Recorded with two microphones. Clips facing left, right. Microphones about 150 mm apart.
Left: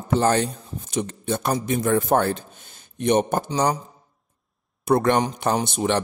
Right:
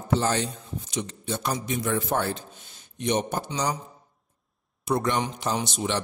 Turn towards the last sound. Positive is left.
turn(degrees=55)  # may be behind; listen again after turning